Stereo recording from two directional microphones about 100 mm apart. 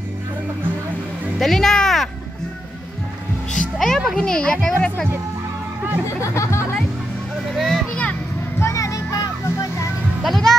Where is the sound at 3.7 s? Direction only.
Centre (ahead or behind).